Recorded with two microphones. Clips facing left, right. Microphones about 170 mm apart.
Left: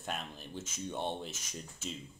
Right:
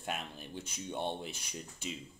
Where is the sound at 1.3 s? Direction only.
45° left (ahead or behind).